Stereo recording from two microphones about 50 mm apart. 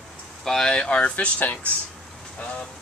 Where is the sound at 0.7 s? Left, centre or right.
Left.